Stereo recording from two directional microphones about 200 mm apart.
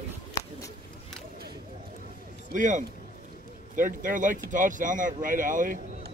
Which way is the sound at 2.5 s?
40° right (ahead or behind).